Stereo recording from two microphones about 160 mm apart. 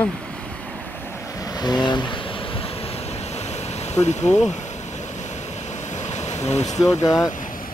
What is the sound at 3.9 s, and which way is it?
Speech, 45° left (ahead or behind).